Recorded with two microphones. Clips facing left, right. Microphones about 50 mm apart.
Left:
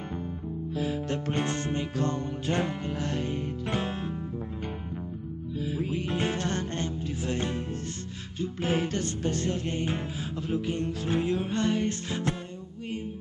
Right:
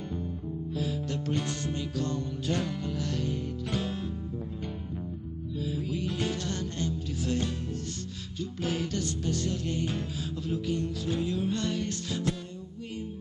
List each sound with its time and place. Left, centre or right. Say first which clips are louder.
0.7 s music: left 3 dB; left
5.6 s music: left 2 dB; left